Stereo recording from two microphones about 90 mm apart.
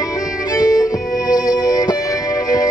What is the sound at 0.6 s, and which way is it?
Music, 40° left (ahead or behind).